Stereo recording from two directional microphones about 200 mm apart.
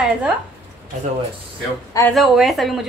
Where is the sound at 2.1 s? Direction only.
Centre (ahead or behind).